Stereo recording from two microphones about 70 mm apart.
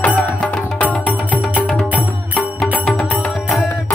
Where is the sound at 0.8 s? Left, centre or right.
Left.